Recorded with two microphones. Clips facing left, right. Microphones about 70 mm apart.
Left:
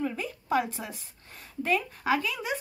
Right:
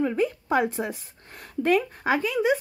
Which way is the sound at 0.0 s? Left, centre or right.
Right.